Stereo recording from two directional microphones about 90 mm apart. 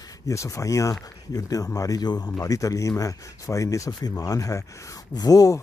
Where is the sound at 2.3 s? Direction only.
40° left (ahead or behind).